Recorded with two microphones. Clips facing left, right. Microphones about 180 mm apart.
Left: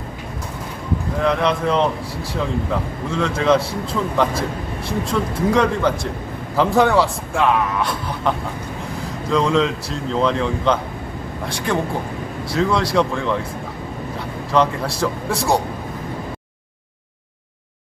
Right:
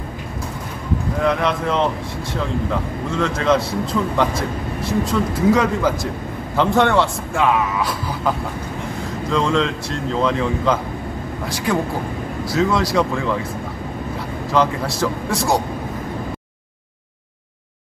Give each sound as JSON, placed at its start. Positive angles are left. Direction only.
{"t": 1.2, "sound": "a man's voice", "side_deg": 0}
{"t": 14.5, "sound": "a man's voice", "side_deg": 0}